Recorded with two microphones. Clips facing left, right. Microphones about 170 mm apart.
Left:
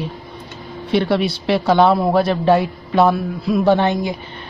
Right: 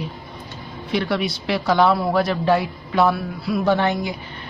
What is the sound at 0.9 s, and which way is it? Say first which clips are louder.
Speech: left 5 dB; 30° left (ahead or behind).